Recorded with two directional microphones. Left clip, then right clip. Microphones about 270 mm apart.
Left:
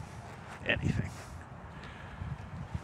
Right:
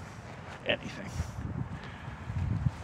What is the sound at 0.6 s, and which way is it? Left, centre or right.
Speech, centre.